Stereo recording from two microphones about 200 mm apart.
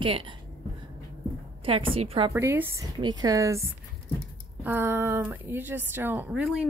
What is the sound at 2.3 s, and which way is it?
A woman's voice, 15° right (ahead or behind).